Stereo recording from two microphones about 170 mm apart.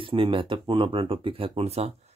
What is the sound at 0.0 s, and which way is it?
Speech, 30° right (ahead or behind).